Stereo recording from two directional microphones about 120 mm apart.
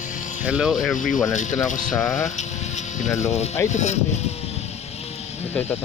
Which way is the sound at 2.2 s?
75° left (ahead or behind).